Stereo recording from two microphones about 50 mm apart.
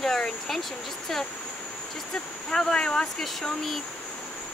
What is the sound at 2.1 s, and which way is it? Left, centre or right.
Speech, centre.